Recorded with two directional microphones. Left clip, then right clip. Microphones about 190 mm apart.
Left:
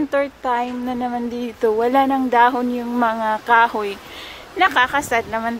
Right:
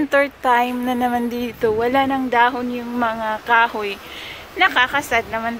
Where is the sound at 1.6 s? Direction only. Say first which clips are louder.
Left 1 dB; 20° left (ahead or behind).